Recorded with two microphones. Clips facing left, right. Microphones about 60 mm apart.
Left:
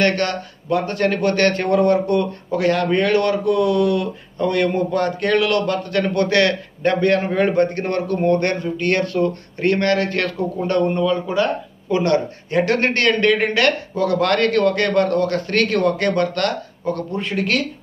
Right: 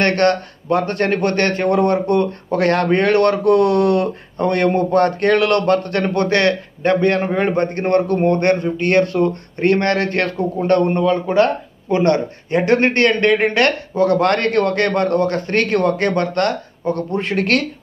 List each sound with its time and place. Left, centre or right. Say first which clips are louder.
0.0 s a man's voice: right 4 dB; right
2.6 s a man's voice: right 2 dB; right
11.9 s a man's voice: right 2 dB; right
17.1 s speech: right 5 dB; right